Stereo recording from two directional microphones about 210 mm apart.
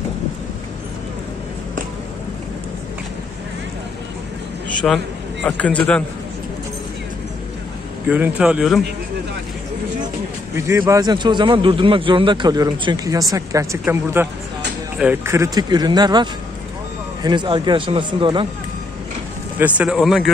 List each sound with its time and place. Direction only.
4.8 s a man's voice: 5° left (ahead or behind)
8.1 s speech: 5° right (ahead or behind)
10.5 s a man's voice: 15° right (ahead or behind)
19.6 s speech: 5° right (ahead or behind)